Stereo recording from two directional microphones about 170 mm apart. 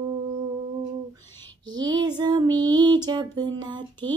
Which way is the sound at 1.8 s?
25° right (ahead or behind).